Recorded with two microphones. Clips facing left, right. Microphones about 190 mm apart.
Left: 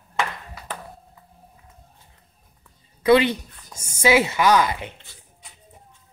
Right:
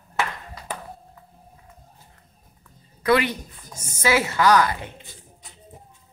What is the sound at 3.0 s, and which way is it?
A woman's voice, 25° left (ahead or behind).